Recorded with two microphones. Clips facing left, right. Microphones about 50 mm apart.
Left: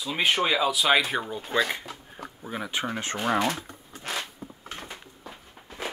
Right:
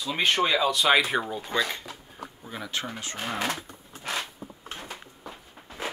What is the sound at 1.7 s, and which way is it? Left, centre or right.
Speech, centre.